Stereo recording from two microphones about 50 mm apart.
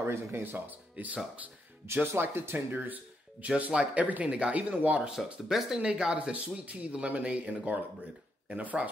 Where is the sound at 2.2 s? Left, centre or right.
Right.